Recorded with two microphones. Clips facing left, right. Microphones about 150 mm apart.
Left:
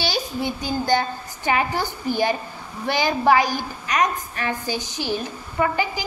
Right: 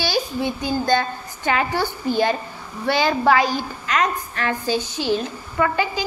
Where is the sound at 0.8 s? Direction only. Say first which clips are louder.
Left 1 dB; 15° left (ahead or behind).